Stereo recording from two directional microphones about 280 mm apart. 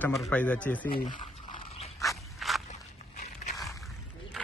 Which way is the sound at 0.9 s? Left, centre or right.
Centre.